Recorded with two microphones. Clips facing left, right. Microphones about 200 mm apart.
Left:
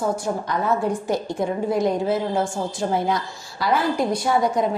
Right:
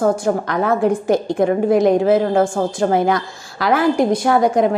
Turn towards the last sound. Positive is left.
turn(degrees=-60)  # may be behind; listen again after turning